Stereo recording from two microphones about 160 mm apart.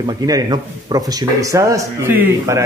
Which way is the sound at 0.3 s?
25° right (ahead or behind).